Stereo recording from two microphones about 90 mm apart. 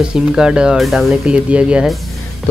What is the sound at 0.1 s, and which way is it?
Speech, 10° right (ahead or behind).